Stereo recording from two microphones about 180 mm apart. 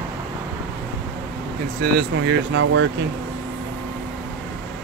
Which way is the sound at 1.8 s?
85° right.